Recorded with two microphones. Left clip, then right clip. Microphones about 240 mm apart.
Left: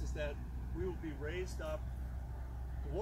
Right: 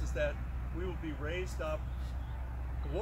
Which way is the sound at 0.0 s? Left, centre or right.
Right.